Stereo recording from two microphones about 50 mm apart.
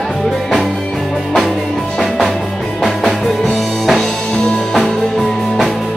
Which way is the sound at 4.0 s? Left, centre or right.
Centre.